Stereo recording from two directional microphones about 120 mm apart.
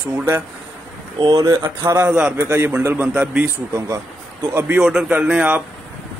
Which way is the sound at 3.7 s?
25° right (ahead or behind).